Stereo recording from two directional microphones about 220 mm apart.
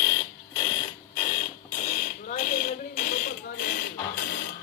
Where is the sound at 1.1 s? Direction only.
30° left (ahead or behind).